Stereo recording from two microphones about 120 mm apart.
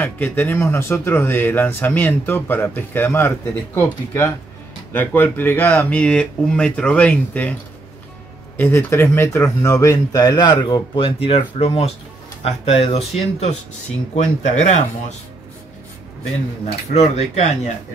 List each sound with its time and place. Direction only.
0.0 s speech: 15° left (ahead or behind)
8.5 s speech: 20° left (ahead or behind)
11.0 s speech: 50° left (ahead or behind)
14.1 s speech: 70° left (ahead or behind)
16.6 s speech: 65° left (ahead or behind)